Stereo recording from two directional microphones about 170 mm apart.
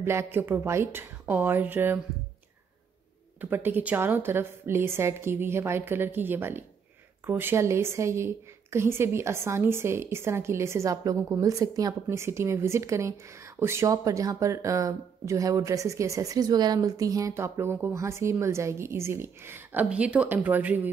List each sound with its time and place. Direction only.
0.0 s speech: 15° right (ahead or behind)
3.3 s speech: 10° right (ahead or behind)